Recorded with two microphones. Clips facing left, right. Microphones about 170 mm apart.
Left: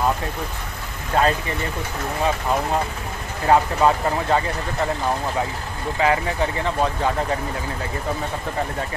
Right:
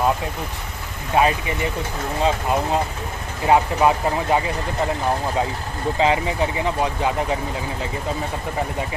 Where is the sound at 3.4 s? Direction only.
15° right (ahead or behind).